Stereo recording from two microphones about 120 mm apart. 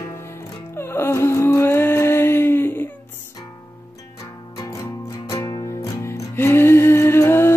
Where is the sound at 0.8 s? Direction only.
20° left (ahead or behind).